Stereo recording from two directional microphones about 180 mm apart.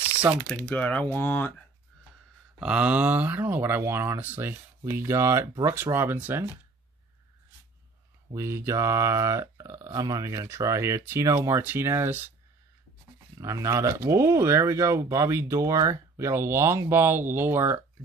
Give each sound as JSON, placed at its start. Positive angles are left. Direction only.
{"t": 0.7, "sound": "speech", "side_deg": 10}
{"t": 2.6, "sound": "speech", "side_deg": -5}
{"t": 8.4, "sound": "speech", "side_deg": -15}
{"t": 13.4, "sound": "speech", "side_deg": -15}